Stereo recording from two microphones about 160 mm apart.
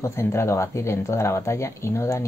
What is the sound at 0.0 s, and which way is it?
Speech, 20° left (ahead or behind).